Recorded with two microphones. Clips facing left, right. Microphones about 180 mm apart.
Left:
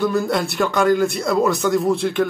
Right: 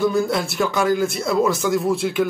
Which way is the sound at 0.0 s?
Centre (ahead or behind).